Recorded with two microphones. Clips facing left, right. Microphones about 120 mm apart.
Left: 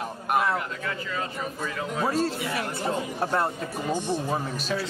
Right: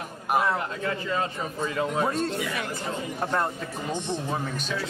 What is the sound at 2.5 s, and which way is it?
Speech, 35° left (ahead or behind).